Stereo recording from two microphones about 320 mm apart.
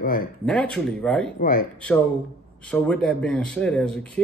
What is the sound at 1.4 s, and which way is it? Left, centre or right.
Speech, left.